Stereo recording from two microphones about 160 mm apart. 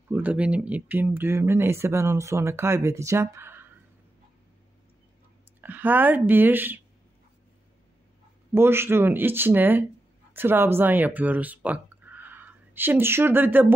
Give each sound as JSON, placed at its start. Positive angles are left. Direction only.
{"t": 0.1, "sound": "speech", "side_deg": -10}
{"t": 5.6, "sound": "speech", "side_deg": -10}
{"t": 8.5, "sound": "speech", "side_deg": -15}